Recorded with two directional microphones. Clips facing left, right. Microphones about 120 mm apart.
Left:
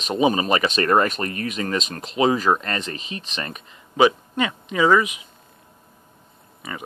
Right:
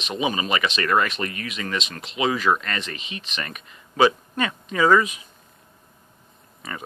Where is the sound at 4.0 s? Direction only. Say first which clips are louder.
Left 1 dB; 15° left (ahead or behind).